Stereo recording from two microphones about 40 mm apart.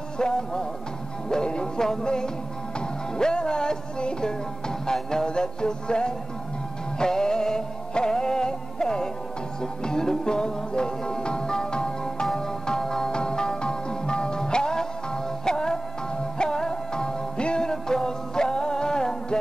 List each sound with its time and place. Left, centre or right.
0.2 s music: centre